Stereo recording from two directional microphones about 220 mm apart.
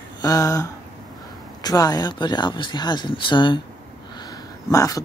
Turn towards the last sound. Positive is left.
turn(degrees=15)  # may be behind; listen again after turning